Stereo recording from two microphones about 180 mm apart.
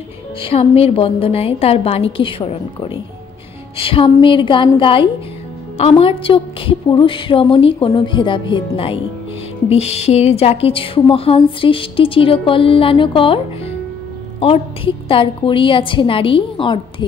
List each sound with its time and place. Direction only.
0.4 s a woman's voice: 30° left (ahead or behind)